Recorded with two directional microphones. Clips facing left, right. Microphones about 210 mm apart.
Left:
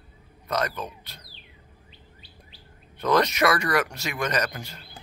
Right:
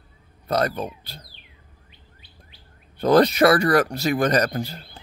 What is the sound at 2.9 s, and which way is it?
Speech, 30° right (ahead or behind).